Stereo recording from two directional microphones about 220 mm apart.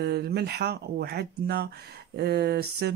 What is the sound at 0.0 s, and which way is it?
Speech, 45° right (ahead or behind).